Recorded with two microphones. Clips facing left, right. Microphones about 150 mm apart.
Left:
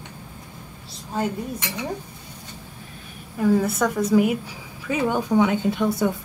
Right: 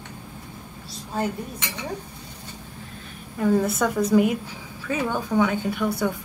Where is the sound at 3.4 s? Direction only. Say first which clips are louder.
Left 1 dB; centre (ahead or behind).